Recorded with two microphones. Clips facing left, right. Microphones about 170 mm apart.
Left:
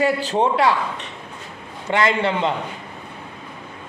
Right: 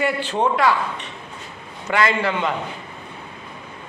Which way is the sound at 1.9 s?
25° left (ahead or behind).